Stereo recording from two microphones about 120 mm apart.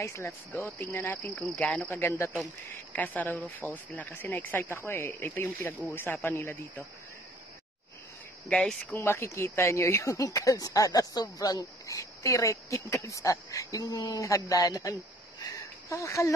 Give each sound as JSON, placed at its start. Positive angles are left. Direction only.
{"t": 0.0, "sound": "speech", "side_deg": 25}
{"t": 8.5, "sound": "speech", "side_deg": 5}
{"t": 9.0, "sound": "speech", "side_deg": 20}